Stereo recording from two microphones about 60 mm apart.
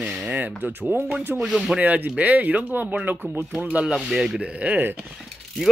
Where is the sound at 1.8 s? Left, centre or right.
Right.